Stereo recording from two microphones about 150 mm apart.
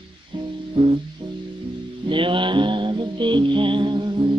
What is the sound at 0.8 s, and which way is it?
Music, 35° right (ahead or behind).